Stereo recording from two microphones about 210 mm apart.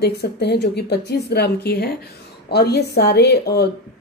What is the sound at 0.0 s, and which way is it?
A woman's voice, 50° left (ahead or behind).